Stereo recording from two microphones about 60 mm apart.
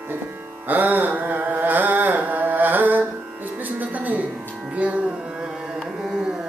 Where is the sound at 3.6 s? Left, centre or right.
Right.